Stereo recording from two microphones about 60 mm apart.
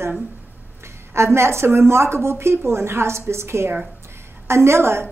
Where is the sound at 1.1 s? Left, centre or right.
Right.